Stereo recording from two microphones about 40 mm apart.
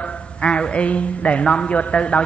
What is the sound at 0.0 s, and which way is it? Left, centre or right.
A woman's voice, left.